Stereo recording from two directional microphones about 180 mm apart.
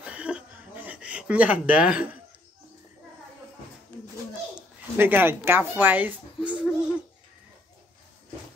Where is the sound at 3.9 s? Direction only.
5° left (ahead or behind).